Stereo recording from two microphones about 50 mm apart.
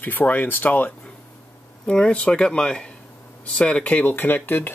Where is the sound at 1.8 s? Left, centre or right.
Centre; by 4.7 s left.